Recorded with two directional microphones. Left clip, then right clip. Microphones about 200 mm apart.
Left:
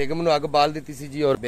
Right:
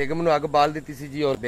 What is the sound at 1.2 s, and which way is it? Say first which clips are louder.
Speech: left 2 dB; 20° left (ahead or behind).